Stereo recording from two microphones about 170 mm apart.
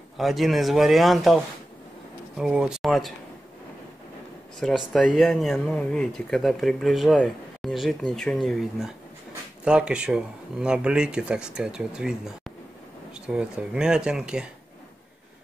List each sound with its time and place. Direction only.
0.2 s speech: centre (ahead or behind)
4.6 s speech: centre (ahead or behind)